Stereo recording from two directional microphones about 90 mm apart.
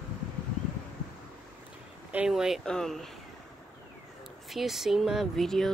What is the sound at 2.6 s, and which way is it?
Speech, 5° left (ahead or behind).